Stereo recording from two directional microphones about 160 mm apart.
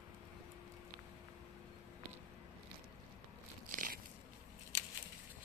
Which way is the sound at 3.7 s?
60° right (ahead or behind).